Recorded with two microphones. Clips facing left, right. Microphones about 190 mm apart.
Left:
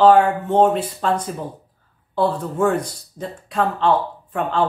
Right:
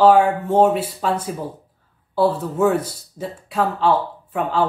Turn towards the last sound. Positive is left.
turn(degrees=-5)  # may be behind; listen again after turning